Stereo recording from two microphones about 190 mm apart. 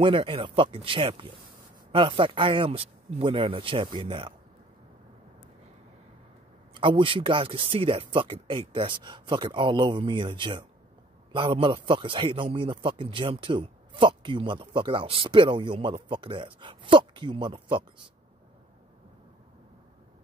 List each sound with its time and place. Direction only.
0.0 s a man's voice: 25° right (ahead or behind)
6.7 s a man's voice: 25° right (ahead or behind)